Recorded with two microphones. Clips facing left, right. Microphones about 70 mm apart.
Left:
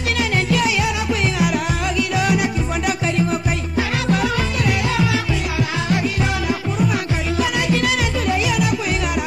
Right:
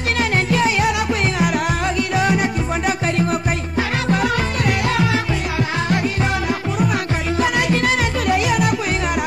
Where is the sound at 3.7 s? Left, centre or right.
Right.